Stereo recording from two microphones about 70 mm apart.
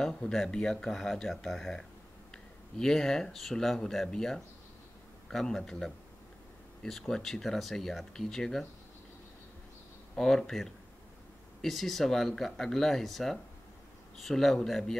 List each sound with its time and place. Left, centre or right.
0.0 s speech: centre
10.1 s speech: centre